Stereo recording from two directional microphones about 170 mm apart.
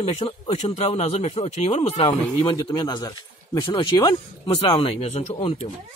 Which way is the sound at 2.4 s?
25° left (ahead or behind).